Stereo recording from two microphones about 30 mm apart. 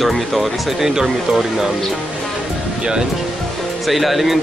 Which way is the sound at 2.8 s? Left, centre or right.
Right.